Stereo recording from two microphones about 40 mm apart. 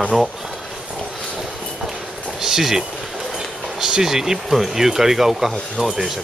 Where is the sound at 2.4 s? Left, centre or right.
Centre.